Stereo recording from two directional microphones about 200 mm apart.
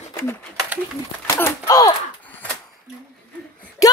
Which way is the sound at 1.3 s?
15° left (ahead or behind).